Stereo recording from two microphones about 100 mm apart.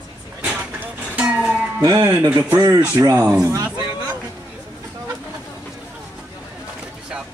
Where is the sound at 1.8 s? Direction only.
35° right (ahead or behind).